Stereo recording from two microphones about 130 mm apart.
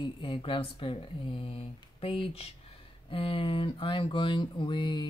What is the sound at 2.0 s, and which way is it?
Speech, 45° left (ahead or behind).